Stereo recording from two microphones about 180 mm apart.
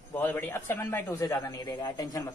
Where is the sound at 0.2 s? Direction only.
10° left (ahead or behind).